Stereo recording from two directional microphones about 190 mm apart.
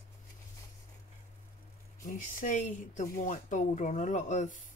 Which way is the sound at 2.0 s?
45° left (ahead or behind).